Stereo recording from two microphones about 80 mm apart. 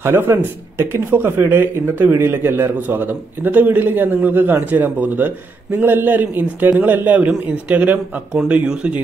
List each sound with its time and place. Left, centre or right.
0.0 s speech: right; by 9.0 s centre